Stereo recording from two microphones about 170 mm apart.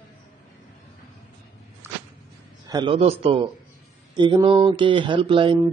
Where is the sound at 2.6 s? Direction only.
30° right (ahead or behind).